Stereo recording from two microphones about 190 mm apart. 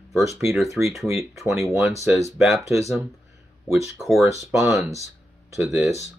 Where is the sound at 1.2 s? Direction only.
15° right (ahead or behind).